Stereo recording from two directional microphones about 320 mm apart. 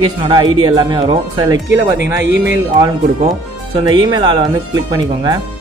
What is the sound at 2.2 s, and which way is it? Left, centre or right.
Speech, right.